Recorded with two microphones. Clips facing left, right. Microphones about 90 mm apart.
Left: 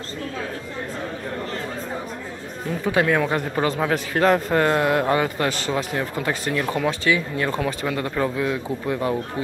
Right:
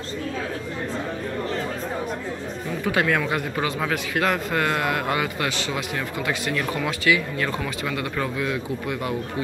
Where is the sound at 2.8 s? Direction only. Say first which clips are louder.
Left 2 dB; 25° left (ahead or behind).